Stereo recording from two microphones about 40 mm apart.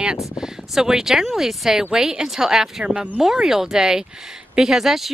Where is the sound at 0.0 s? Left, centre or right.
Right.